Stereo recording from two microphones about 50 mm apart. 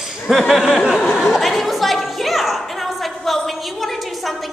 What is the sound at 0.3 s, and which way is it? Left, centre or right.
Speech, centre.